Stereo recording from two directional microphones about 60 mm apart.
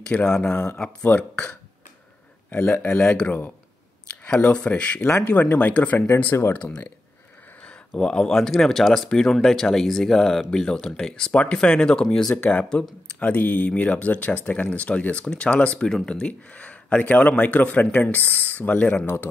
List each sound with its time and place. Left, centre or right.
0.0 s speech: centre
2.5 s speech: left
4.1 s a sound: centre
4.4 s speech: left
5.0 s speech: left
5.9 s speech: left; by 12.3 s centre
12.4 s speech: left